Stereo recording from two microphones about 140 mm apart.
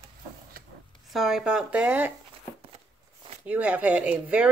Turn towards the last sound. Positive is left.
turn(degrees=-10)  # may be behind; listen again after turning